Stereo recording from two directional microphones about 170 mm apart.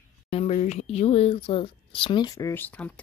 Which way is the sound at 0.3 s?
40° left (ahead or behind).